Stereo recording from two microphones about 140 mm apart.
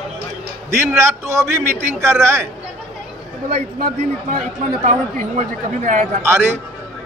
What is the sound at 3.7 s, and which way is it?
Speech, 90° right.